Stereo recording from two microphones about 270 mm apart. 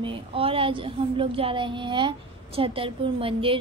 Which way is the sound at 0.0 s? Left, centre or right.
Right.